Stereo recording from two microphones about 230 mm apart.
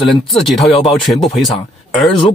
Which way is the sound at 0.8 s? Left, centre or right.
Centre.